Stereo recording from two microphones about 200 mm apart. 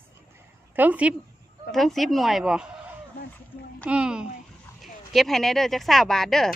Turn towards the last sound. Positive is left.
turn(degrees=0)  # may be behind; listen again after turning